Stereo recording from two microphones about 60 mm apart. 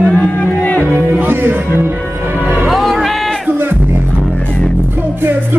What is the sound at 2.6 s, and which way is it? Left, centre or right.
Music, centre.